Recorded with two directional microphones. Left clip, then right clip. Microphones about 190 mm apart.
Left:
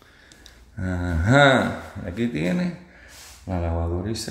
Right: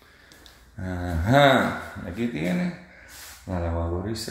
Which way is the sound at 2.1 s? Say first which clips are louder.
Left 3 dB; 20° left (ahead or behind).